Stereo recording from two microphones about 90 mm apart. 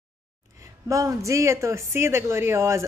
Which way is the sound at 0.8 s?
35° right (ahead or behind).